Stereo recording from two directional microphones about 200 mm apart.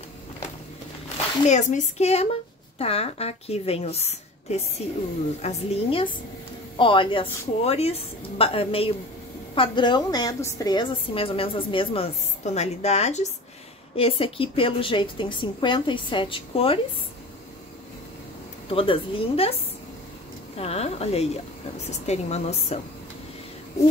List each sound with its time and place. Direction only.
1.5 s a woman's voice: 35° left (ahead or behind)
18.7 s a woman's voice: 25° left (ahead or behind)
20.5 s a woman's voice: 30° left (ahead or behind)